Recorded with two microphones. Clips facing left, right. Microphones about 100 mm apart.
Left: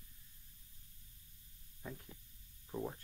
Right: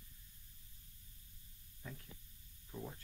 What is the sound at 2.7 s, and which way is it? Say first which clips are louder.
Speech: left 6 dB; 30° left (ahead or behind).